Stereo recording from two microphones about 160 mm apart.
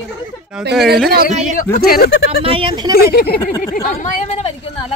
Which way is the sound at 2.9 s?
75° left (ahead or behind).